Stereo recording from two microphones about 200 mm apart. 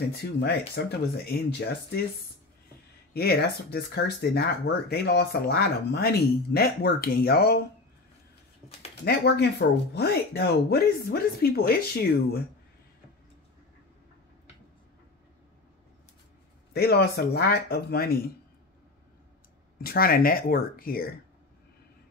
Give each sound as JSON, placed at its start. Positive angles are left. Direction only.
{"t": 0.2, "sound": "speech", "side_deg": 55}
{"t": 3.1, "sound": "speech", "side_deg": 50}
{"t": 9.0, "sound": "speech", "side_deg": 55}
{"t": 16.7, "sound": "speech", "side_deg": 50}
{"t": 19.8, "sound": "speech", "side_deg": 50}